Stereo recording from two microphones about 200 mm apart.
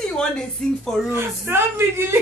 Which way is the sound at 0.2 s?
5° left (ahead or behind).